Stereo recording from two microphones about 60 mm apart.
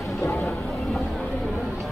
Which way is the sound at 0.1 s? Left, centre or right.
Left.